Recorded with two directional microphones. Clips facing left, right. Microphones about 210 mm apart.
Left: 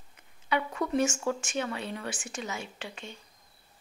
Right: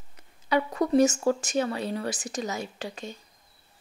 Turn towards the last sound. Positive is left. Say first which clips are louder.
# right 6 dB
turn(degrees=-40)  # may be behind; listen again after turning